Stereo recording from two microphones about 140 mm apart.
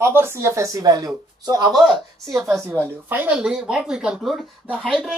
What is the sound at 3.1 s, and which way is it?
Speech, 10° right (ahead or behind).